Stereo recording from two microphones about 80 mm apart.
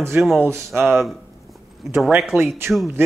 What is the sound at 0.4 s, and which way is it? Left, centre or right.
Speech, right.